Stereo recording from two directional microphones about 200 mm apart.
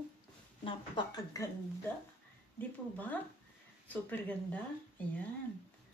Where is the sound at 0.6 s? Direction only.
25° left (ahead or behind).